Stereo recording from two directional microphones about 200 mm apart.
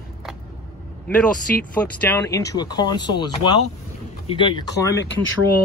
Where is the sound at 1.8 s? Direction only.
10° left (ahead or behind).